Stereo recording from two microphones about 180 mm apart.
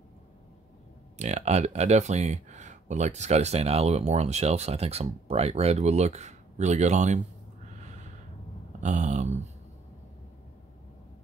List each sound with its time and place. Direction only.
1.1 s speech: 40° right (ahead or behind)
8.8 s speech: 40° right (ahead or behind)